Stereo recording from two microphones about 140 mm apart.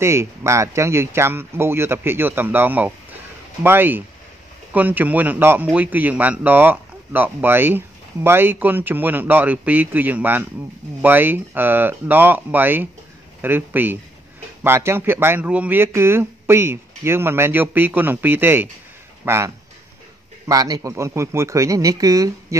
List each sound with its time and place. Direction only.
0.0 s speech: 20° right (ahead or behind)